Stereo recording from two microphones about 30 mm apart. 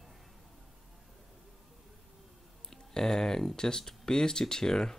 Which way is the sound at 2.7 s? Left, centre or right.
Centre.